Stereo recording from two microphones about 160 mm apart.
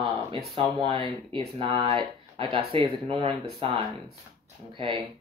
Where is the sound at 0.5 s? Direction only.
30° right (ahead or behind).